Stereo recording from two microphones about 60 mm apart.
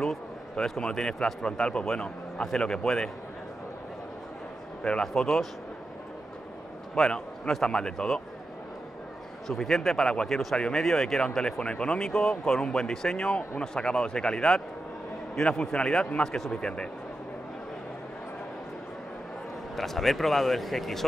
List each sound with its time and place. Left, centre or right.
0.0 s a man's voice: centre
4.8 s speech: centre
7.0 s speech: centre
9.5 s speech: centre
19.7 s speech: centre